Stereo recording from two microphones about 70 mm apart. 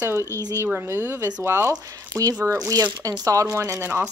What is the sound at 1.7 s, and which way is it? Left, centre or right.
Speech, right.